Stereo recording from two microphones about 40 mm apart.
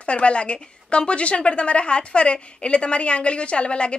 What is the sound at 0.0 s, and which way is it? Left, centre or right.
A woman's voice, left.